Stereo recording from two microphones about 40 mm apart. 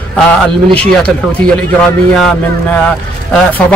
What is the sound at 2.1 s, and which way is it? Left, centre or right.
Speech, centre.